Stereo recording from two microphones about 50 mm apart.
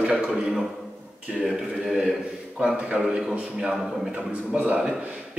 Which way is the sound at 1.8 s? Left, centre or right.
Centre.